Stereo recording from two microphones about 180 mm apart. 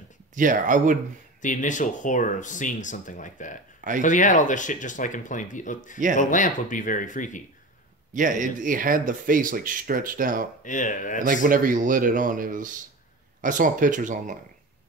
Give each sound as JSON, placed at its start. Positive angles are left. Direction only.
{"t": 0.3, "sound": "speech", "side_deg": -45}
{"t": 1.4, "sound": "speech", "side_deg": 45}
{"t": 8.1, "sound": "speech", "side_deg": -45}
{"t": 10.6, "sound": "speech", "side_deg": 45}
{"t": 11.2, "sound": "speech", "side_deg": -50}